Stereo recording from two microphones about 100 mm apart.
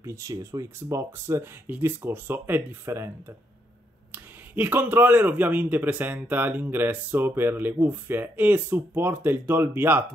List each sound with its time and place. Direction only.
0.0 s a man's voice: 30° right (ahead or behind)